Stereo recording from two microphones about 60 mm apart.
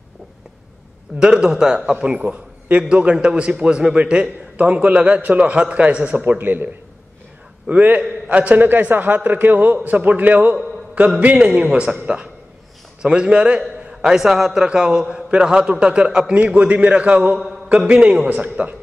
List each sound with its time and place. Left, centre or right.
1.2 s a man's voice: centre
18.3 s a man's voice: right